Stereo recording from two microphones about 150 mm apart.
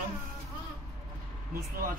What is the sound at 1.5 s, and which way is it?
Speech, 70° right (ahead or behind).